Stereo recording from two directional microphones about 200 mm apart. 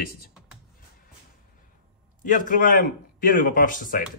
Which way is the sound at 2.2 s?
40° left (ahead or behind).